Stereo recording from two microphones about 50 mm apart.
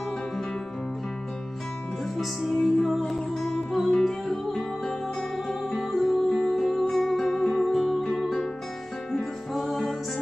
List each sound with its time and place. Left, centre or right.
2.1 s music: centre
7.7 s music: centre
8.1 s music: centre
9.5 s music: centre